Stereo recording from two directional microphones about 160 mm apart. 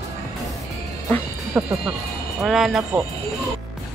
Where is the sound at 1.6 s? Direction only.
10° right (ahead or behind).